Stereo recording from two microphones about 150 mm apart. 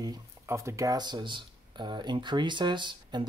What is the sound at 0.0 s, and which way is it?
Speech, 25° right (ahead or behind).